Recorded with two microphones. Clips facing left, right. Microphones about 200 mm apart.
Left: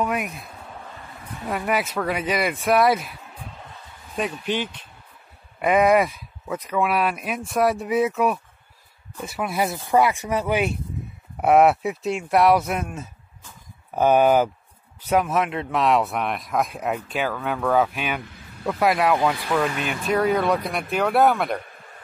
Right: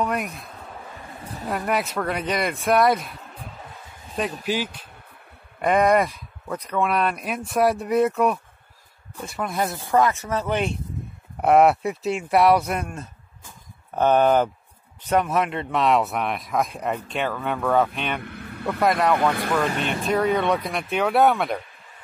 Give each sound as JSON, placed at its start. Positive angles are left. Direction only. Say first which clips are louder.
{"t": 0.0, "sound": "speech", "louder": "even", "side_deg": 5}
{"t": 1.5, "sound": "speech", "louder": "even", "side_deg": 0}
{"t": 4.5, "sound": "speech", "louder": "even", "side_deg": -5}
{"t": 5.6, "sound": "speech", "louder": "left 1 dB", "side_deg": 5}
{"t": 18.2, "sound": "speech", "louder": "right 3 dB", "side_deg": -60}
{"t": 18.7, "sound": "speech", "louder": "even", "side_deg": 5}